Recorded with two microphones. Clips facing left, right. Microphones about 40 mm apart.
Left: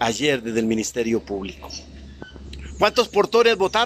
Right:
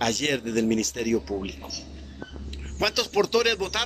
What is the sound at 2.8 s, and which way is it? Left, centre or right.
Speech, centre.